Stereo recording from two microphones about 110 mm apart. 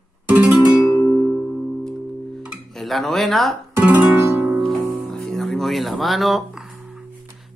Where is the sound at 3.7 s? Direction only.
20° right (ahead or behind).